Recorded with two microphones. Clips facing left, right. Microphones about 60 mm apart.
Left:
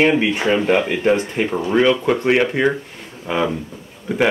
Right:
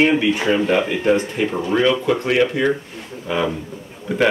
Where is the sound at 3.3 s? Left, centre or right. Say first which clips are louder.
Left 1 dB; centre.